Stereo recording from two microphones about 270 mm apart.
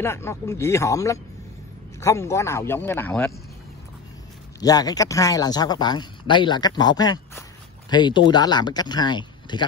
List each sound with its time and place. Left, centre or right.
0.0 s speech: centre
4.6 s speech: centre